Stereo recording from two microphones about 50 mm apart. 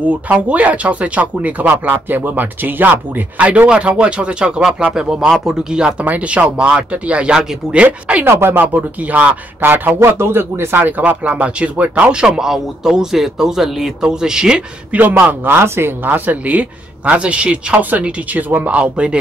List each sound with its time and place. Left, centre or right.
0.0 s speech: right
1.9 s speech: right
3.3 s speech: right
6.0 s speech: right
8.3 s speech: right
8.7 s speech: right
9.6 s speech: right
9.9 s speech: right
10.8 s speech: right
12.3 s speech: centre
14.9 s speech: right
15.4 s speech: right
18.0 s speech: right
18.8 s speech: right